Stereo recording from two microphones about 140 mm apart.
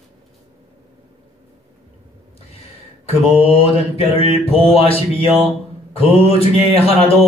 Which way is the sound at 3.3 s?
45° left (ahead or behind).